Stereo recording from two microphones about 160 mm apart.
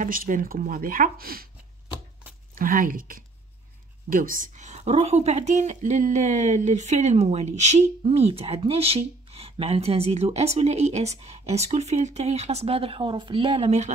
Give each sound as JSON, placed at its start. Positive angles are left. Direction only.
{"t": 0.0, "sound": "speech", "side_deg": -60}
{"t": 2.5, "sound": "speech", "side_deg": -60}